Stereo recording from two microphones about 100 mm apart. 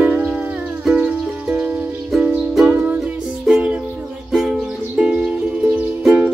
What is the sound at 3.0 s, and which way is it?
Music, 5° right (ahead or behind).